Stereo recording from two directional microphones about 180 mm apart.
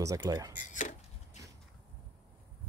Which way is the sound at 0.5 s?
40° left (ahead or behind).